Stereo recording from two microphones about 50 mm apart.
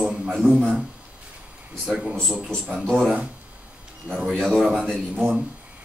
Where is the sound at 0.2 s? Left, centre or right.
Centre.